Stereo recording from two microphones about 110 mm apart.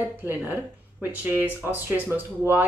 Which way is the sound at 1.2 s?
15° right (ahead or behind).